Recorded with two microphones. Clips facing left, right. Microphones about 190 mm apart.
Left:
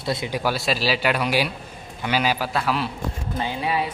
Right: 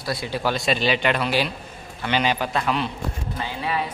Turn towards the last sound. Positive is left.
turn(degrees=15)  # may be behind; listen again after turning